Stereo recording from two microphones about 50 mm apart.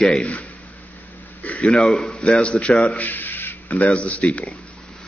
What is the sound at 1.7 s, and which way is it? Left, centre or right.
A man's voice, centre.